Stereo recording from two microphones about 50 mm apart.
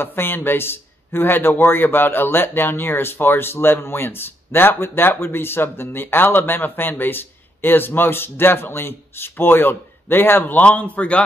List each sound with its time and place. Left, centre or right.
0.0 s a man's voice: left